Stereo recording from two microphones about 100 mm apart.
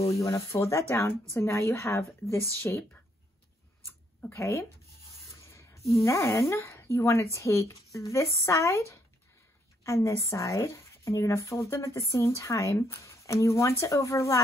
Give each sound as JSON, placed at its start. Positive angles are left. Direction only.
{"t": 0.0, "sound": "speech", "side_deg": 30}
{"t": 4.3, "sound": "speech", "side_deg": 25}